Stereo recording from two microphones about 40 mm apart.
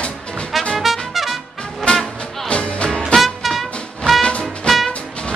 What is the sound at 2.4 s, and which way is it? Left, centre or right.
Music, left.